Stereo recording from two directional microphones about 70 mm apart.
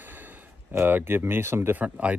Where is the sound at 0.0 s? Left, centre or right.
Right.